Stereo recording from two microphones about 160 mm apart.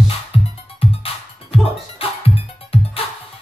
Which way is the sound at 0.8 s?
35° left (ahead or behind).